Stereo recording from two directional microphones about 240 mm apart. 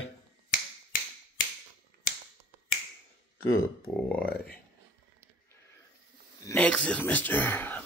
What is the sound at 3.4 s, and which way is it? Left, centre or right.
Speech, centre.